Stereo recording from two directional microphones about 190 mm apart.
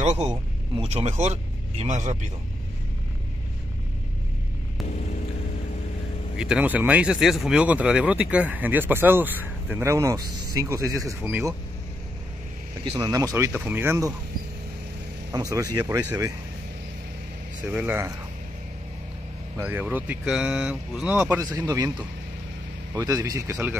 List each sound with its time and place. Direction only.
0.2 s speech: 20° right (ahead or behind)
0.8 s speech: 35° right (ahead or behind)
6.3 s speech: 5° right (ahead or behind)
12.8 s speech: 25° right (ahead or behind)
15.3 s speech: 20° right (ahead or behind)
17.7 s speech: 10° right (ahead or behind)
19.6 s speech: 10° right (ahead or behind)
22.9 s speech: 20° right (ahead or behind)